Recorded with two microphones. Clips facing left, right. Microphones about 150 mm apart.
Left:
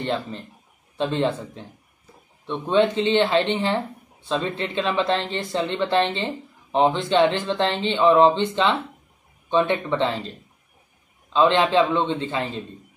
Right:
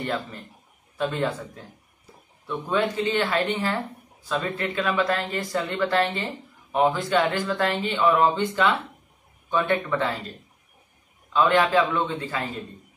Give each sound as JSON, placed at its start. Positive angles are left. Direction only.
{"t": 0.0, "sound": "speech", "side_deg": 25}
{"t": 11.3, "sound": "speech", "side_deg": 25}